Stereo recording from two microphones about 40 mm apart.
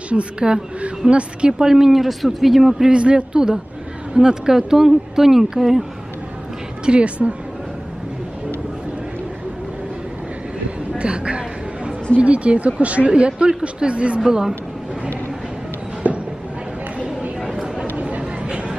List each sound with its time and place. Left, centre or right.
0.1 s a woman's voice: right
1.6 s speech: centre
2.9 s speech: right; by 5.9 s centre
6.9 s speech: right
11.0 s a sound: right
12.2 s speech: right
16.0 s a sound: right
17.4 s a sound: centre
17.9 s chatter: right